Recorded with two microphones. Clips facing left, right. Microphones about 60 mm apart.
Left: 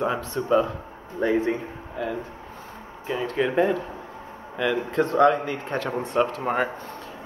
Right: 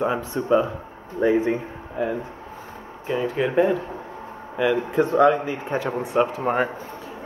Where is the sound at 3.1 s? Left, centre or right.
Centre.